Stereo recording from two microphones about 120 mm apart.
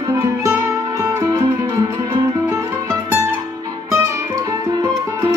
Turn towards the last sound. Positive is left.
turn(degrees=-30)  # may be behind; listen again after turning